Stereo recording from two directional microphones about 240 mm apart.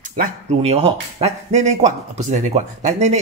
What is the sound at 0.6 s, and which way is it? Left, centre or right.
Speech, right.